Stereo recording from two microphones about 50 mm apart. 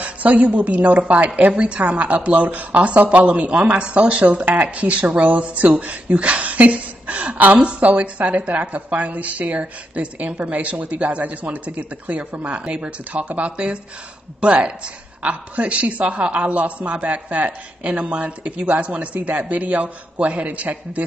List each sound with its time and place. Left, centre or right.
0.0 s a woman's voice: right